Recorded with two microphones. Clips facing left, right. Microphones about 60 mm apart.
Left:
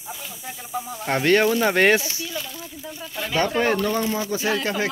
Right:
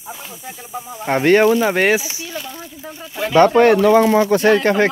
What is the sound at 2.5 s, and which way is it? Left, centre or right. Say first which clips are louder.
Speech: right 3 dB; right.